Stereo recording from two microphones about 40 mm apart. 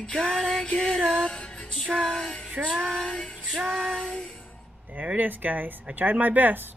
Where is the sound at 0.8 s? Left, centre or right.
Centre.